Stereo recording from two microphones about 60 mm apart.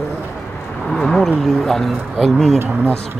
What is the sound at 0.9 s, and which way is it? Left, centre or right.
Speech, centre.